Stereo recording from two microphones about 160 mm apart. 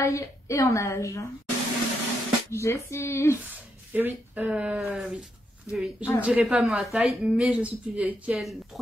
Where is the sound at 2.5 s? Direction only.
15° left (ahead or behind).